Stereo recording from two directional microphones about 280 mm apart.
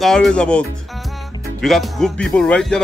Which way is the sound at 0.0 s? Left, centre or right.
Centre.